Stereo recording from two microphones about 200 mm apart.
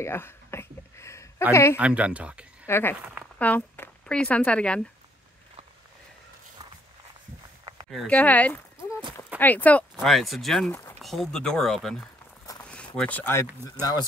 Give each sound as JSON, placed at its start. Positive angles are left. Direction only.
{"t": 0.0, "sound": "a sound", "side_deg": 10}
{"t": 1.5, "sound": "speech", "side_deg": 15}
{"t": 1.8, "sound": "speech", "side_deg": -5}
{"t": 2.6, "sound": "speech", "side_deg": 10}
{"t": 3.0, "sound": "speech", "side_deg": -5}
{"t": 3.3, "sound": "speech", "side_deg": 10}
{"t": 7.9, "sound": "speech", "side_deg": 5}